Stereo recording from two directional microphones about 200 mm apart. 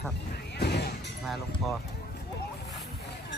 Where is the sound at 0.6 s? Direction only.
55° left (ahead or behind).